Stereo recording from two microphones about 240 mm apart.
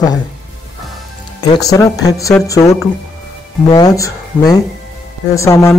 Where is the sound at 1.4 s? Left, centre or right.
Centre.